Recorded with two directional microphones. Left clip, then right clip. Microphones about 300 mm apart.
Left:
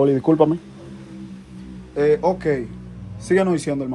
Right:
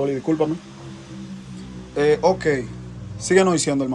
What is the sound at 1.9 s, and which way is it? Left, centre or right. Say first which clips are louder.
Speech: even; centre.